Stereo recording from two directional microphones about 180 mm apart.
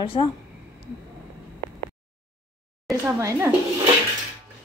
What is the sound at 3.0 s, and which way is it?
Speech, 15° right (ahead or behind).